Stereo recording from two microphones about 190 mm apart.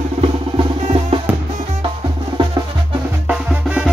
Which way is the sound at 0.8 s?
30° right (ahead or behind).